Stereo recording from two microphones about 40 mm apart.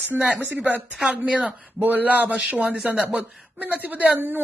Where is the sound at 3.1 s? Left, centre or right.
Right.